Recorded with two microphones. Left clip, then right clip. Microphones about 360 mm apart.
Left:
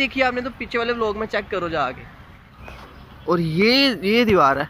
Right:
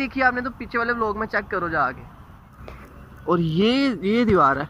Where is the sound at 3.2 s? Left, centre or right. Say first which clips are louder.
Left 2 dB; centre.